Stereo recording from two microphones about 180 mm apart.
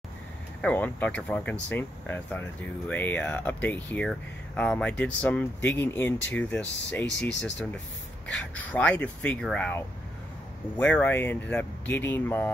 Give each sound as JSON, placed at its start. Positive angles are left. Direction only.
{"t": 0.6, "sound": "speech", "side_deg": 5}
{"t": 8.3, "sound": "speech", "side_deg": 5}